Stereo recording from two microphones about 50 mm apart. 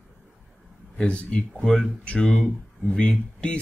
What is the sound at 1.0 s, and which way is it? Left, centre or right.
Speech, left.